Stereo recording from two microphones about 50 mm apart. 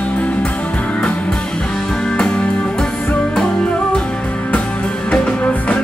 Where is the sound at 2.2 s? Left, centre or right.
Centre.